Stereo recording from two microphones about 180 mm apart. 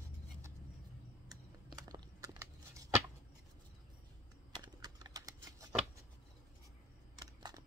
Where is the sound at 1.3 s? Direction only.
20° right (ahead or behind).